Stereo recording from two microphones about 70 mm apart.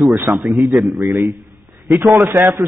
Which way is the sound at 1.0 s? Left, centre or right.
Right.